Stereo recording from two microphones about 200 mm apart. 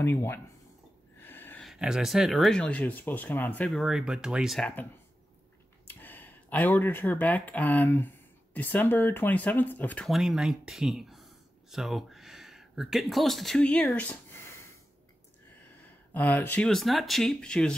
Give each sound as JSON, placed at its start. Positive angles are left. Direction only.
{"t": 0.0, "sound": "speech", "side_deg": 10}
{"t": 5.9, "sound": "speech", "side_deg": 10}
{"t": 16.1, "sound": "speech", "side_deg": 10}